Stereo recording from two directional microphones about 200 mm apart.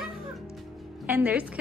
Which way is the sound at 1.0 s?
10° right (ahead or behind).